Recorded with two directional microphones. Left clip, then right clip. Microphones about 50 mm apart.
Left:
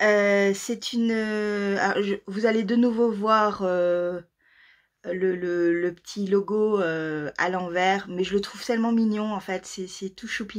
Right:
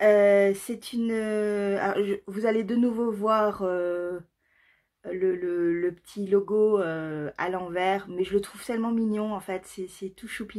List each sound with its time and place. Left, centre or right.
0.0 s speech: left
5.0 s speech: left